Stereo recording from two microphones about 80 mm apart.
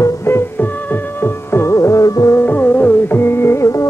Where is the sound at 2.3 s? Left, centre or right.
Left.